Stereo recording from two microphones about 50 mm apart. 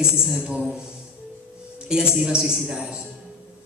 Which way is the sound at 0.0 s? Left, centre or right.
Centre.